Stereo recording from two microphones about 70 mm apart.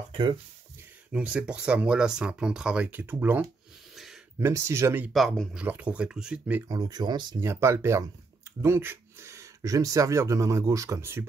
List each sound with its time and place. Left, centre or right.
1.1 s speech: centre
2.9 s speech: right
3.9 s a sound: centre
4.4 s speech: right
5.1 s speech: centre
5.7 s speech: centre
6.7 s speech: right
7.3 s speech: right
11.0 s speech: right